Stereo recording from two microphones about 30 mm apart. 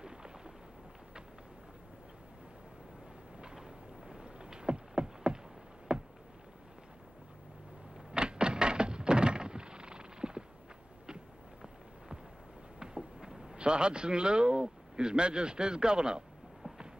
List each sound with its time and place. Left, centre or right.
0.0 s artillery fire: right
3.5 s eruption: centre
4.2 s a sound: right
8.1 s thunk: right
12.7 s a sound: right
13.6 s a man's voice: right